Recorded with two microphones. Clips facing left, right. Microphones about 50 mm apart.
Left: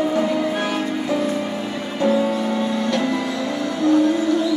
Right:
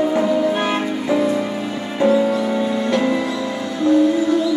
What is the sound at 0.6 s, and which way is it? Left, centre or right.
Music, right.